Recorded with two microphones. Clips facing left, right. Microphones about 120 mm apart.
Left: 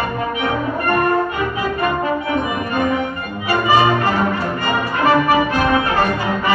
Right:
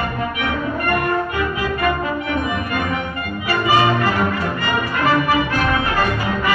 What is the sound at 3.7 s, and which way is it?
Music, 25° left (ahead or behind).